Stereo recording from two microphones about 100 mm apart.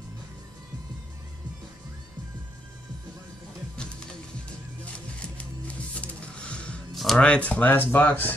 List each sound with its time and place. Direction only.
5.2 s music: 10° left (ahead or behind)
7.0 s speech: 5° left (ahead or behind)